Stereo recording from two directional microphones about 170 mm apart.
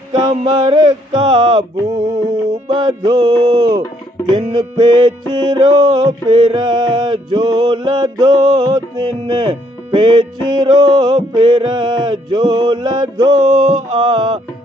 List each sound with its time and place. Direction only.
0.1 s music: 30° right (ahead or behind)